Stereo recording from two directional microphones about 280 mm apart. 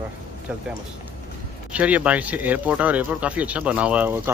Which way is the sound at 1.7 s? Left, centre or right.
Centre.